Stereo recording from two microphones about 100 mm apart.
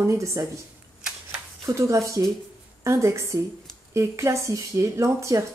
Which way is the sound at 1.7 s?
30° right (ahead or behind).